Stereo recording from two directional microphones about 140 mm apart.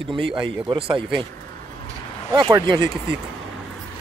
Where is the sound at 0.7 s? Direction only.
40° right (ahead or behind).